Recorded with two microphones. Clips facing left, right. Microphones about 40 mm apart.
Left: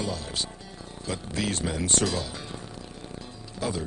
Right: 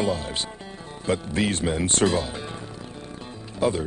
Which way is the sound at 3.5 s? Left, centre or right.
Right.